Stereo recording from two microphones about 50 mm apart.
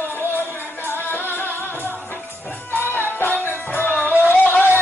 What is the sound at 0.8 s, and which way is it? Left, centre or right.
Music, left.